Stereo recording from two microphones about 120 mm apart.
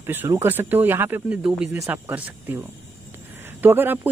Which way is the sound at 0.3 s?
20° right (ahead or behind).